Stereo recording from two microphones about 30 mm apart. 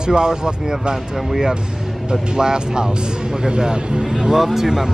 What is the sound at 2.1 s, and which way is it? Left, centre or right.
Speech, right.